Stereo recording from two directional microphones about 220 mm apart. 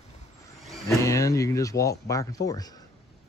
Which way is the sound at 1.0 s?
15° left (ahead or behind).